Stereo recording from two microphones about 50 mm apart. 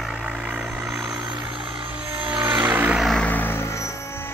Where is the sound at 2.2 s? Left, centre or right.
Right.